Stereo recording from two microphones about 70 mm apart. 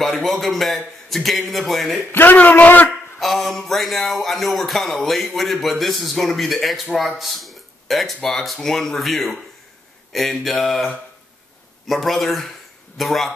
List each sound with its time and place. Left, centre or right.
0.0 s speech: centre
2.1 s a man's voice: left
3.2 s speech: centre
11.9 s speech: centre